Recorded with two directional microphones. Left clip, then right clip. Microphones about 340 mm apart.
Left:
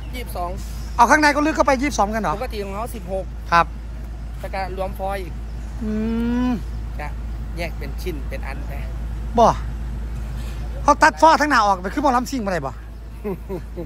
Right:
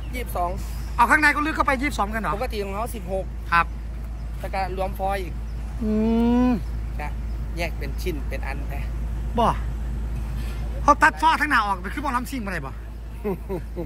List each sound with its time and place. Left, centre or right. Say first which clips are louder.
0.1 s speech: right 2 dB; centre
5.9 s cattle: right 3 dB; centre
7.5 s speech: even; centre
10.9 s speech: left 4 dB; centre